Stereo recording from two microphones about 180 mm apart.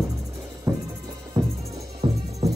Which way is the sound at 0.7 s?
15° right (ahead or behind).